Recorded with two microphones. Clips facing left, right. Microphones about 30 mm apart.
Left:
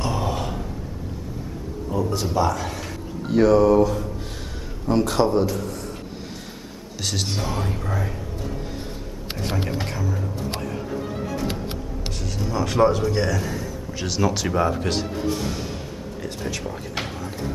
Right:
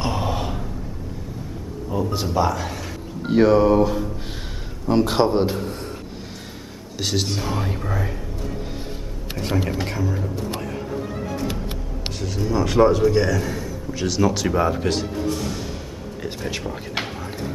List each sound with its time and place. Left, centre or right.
0.0 s a sound: right
1.9 s speech: centre
3.3 s a man's voice: right
7.0 s speech: centre
9.4 s speech: centre
12.1 s a man's voice: centre
16.3 s speech: right